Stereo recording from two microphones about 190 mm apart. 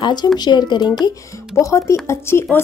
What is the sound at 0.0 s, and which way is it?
Speech, 20° left (ahead or behind).